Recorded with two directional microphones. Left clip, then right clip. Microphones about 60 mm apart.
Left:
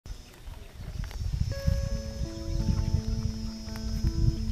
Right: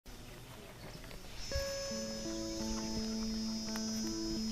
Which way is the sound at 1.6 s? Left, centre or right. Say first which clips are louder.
Even; right.